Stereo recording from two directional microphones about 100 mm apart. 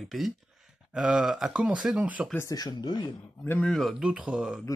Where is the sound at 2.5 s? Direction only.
40° left (ahead or behind).